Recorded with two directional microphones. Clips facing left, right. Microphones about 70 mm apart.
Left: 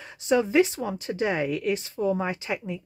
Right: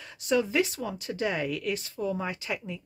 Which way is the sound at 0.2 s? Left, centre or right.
Left.